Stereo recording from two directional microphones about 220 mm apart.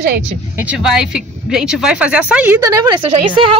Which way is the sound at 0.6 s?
5° right (ahead or behind).